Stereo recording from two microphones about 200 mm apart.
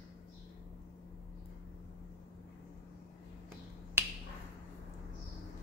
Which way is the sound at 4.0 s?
10° right (ahead or behind).